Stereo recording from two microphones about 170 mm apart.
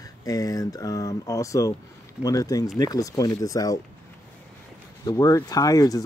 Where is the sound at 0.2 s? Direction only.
20° left (ahead or behind).